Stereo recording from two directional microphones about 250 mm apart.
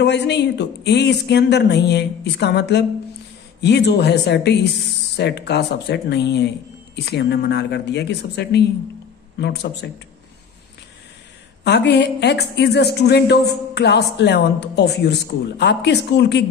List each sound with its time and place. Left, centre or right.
0.0 s a woman's voice: left
11.6 s a woman's voice: left